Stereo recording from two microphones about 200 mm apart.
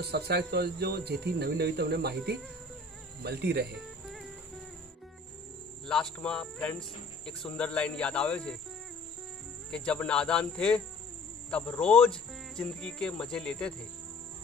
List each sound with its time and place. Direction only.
0.0 s speech: 55° right (ahead or behind)
3.7 s music: centre (ahead or behind)
5.9 s speech: 5° left (ahead or behind)
9.7 s speech: 5° left (ahead or behind)